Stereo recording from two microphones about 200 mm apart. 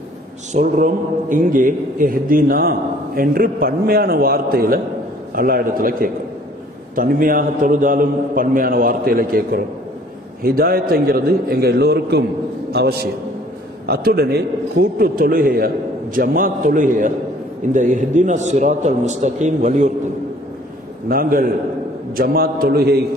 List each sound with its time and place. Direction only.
0.5 s a man's voice: 40° right (ahead or behind)
21.1 s a man's voice: 45° right (ahead or behind)